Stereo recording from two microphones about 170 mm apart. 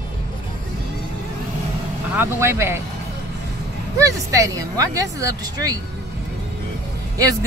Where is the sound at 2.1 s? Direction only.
15° right (ahead or behind).